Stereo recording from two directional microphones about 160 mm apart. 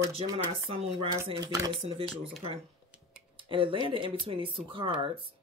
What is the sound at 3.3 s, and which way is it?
Speech, 35° right (ahead or behind).